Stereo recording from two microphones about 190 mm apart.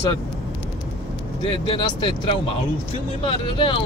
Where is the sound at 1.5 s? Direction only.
30° left (ahead or behind).